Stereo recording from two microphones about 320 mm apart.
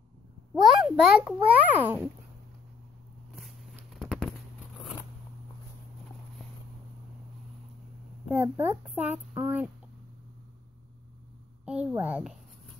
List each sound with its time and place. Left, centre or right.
0.6 s a child's voice: centre
3.4 s a sound: centre
8.4 s a child's voice: centre
11.6 s a child's voice: centre